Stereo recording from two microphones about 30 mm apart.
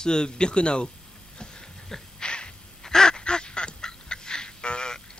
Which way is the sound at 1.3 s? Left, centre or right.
Left.